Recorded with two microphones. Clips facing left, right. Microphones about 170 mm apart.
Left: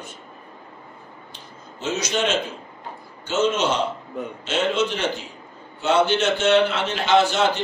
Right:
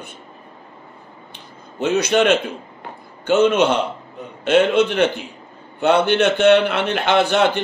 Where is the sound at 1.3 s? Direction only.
60° right (ahead or behind).